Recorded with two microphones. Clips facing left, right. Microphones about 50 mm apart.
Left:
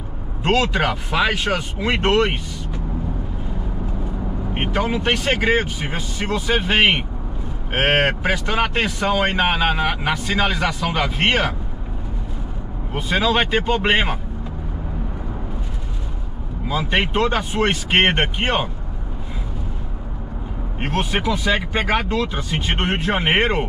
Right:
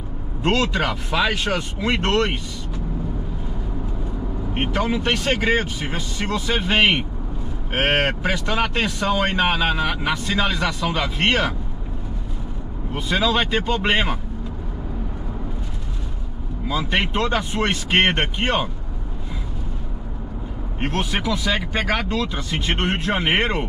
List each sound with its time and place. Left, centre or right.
0.4 s speech: centre
4.6 s speech: centre
12.9 s speech: centre
16.6 s speech: centre
20.8 s speech: centre